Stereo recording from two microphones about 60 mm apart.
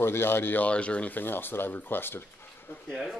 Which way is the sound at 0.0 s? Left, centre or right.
Left.